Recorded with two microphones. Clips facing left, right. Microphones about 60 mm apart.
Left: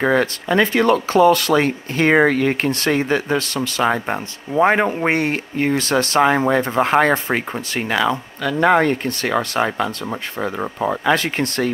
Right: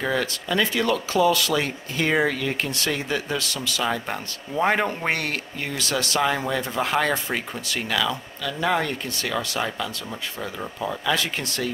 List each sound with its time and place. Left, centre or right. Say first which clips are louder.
0.0 s speech: left 8 dB; left
4.6 s speech: left 6 dB; left
5.6 s speech: left 10 dB; left
8.5 s speech: left 9 dB; left